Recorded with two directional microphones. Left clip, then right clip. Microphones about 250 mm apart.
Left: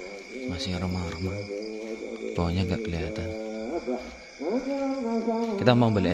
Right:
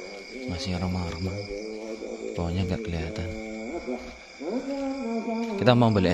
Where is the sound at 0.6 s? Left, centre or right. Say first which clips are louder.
Right 1 dB; centre.